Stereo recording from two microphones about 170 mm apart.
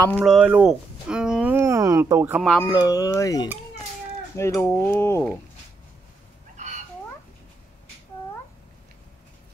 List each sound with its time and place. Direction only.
0.2 s speech: centre (ahead or behind)
2.7 s speech: 20° left (ahead or behind)
6.5 s fowl: 45° right (ahead or behind)